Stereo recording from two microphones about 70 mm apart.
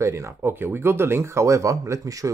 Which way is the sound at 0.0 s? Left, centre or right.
Right.